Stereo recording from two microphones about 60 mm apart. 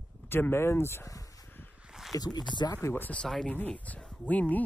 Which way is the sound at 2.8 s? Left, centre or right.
Left.